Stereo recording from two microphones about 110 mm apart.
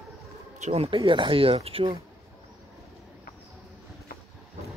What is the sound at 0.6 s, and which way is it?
Speech, 75° right (ahead or behind).